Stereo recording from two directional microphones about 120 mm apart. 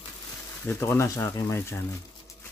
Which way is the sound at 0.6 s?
20° left (ahead or behind).